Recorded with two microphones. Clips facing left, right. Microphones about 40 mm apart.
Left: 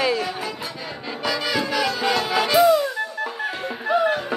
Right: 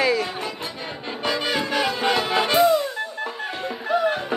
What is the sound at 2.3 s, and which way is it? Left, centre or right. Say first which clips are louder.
Speech: left 2 dB; right.